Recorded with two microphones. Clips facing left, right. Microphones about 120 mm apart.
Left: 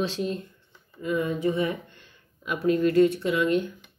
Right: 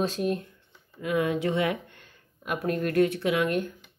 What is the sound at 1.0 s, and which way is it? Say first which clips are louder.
Speech: even; 70° right (ahead or behind).